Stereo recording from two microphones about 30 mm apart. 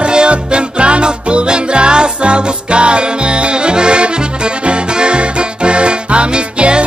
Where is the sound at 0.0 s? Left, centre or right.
Right.